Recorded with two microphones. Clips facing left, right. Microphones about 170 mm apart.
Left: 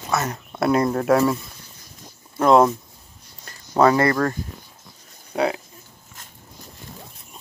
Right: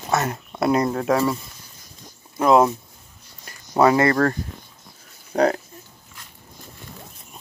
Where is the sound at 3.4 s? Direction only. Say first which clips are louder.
Even; 15° right (ahead or behind).